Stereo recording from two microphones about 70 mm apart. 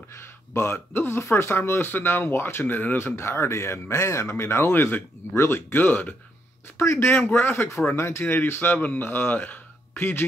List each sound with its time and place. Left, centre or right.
0.1 s speech: left
6.8 s speech: left
7.1 s speech: left